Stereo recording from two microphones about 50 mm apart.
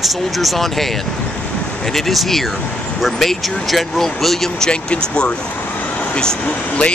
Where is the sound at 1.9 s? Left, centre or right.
Centre.